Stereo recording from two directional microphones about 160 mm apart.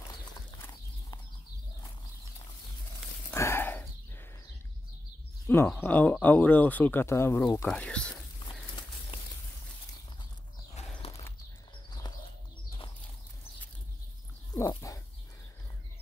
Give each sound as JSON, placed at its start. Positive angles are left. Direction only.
{"t": 3.3, "sound": "a sound", "side_deg": 15}
{"t": 5.5, "sound": "speech", "side_deg": 15}
{"t": 10.8, "sound": "clip-clop", "side_deg": 40}
{"t": 11.9, "sound": "horse", "side_deg": 25}
{"t": 14.5, "sound": "dog", "side_deg": 20}